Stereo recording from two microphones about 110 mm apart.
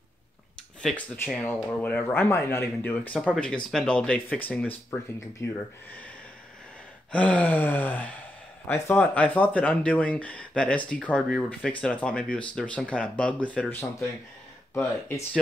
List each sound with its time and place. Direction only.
0.9 s speech: 20° left (ahead or behind)
5.4 s speech: 25° left (ahead or behind)
7.1 s speech: 10° left (ahead or behind)
8.7 s speech: 25° left (ahead or behind)
9.0 s speech: 15° left (ahead or behind)